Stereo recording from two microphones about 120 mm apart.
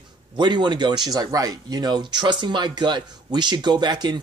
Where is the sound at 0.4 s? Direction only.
40° right (ahead or behind).